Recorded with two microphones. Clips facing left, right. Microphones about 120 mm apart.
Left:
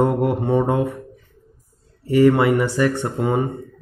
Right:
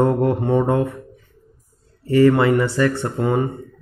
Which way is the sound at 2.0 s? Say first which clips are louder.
Even; 15° left (ahead or behind).